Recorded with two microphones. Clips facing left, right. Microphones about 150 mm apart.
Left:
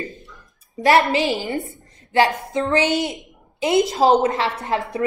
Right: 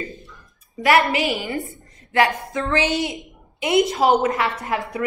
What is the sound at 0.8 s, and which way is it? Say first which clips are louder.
A woman's voice: left 2 dB; 30° left (ahead or behind).